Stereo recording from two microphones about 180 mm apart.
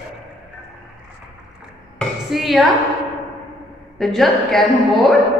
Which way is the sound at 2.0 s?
Centre (ahead or behind).